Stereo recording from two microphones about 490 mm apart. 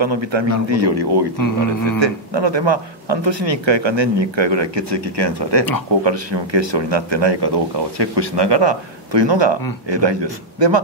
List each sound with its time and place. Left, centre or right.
0.0 s speech: right
1.4 s speech: left
2.0 s speech: right